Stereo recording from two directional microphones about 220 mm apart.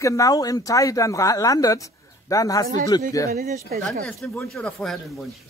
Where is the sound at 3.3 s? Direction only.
40° right (ahead or behind).